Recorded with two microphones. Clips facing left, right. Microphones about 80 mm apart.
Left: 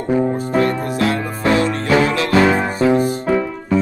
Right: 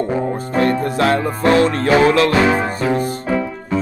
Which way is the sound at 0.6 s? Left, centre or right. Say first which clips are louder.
Right 2 dB; right.